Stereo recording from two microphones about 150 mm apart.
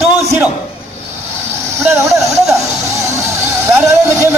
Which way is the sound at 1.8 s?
20° right (ahead or behind).